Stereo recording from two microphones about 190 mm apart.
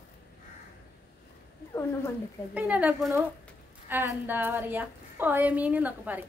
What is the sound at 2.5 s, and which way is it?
A woman's voice, 10° right (ahead or behind).